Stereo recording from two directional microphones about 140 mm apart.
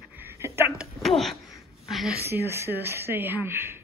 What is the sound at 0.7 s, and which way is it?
Speech, centre (ahead or behind).